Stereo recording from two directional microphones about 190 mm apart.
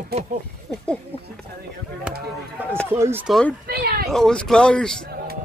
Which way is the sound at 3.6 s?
55° right (ahead or behind).